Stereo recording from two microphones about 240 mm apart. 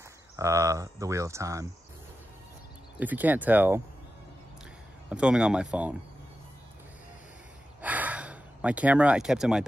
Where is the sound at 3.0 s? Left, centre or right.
Centre.